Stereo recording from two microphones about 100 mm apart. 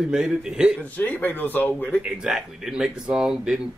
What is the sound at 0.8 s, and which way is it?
Speech, 15° left (ahead or behind).